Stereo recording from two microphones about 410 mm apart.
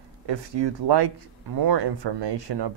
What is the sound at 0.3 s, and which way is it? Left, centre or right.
Speech, right.